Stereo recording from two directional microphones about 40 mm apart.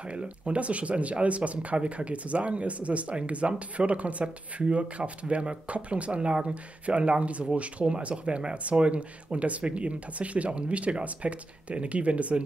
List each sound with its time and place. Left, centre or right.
0.1 s speech: right